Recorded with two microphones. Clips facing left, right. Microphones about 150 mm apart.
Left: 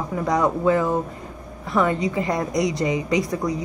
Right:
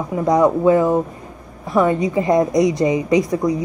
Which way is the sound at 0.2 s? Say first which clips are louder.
Right 6 dB; 20° right (ahead or behind).